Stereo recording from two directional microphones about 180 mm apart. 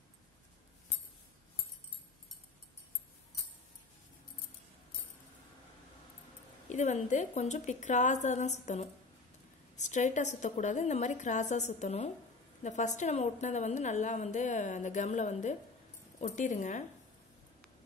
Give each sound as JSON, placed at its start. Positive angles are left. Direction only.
{"t": 6.7, "sound": "a woman's voice", "side_deg": 40}